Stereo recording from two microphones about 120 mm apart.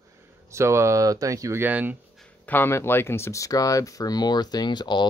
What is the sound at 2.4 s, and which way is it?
Speech, 20° left (ahead or behind).